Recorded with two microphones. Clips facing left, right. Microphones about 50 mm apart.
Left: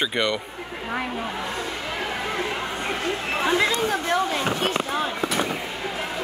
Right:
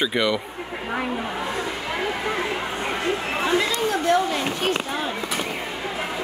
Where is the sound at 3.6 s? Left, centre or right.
Centre.